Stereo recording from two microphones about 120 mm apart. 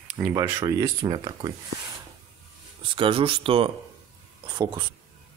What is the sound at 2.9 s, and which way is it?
Speech, 45° right (ahead or behind).